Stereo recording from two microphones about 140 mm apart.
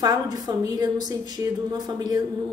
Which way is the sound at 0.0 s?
25° right (ahead or behind).